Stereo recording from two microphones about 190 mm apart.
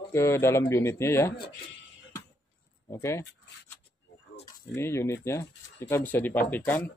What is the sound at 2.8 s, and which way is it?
Speech, 15° left (ahead or behind).